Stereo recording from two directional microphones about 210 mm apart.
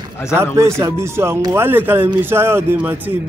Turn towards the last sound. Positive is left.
turn(degrees=-10)  # may be behind; listen again after turning